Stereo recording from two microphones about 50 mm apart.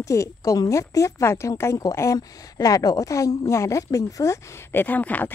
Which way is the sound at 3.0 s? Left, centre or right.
Left.